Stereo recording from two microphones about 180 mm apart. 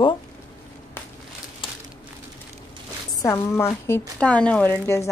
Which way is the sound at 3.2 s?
15° left (ahead or behind).